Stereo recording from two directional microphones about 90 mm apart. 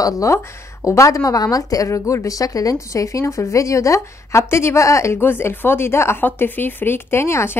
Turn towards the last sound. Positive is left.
turn(degrees=30)  # may be behind; listen again after turning